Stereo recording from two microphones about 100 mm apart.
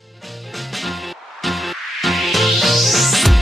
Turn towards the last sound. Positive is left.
turn(degrees=0)  # may be behind; listen again after turning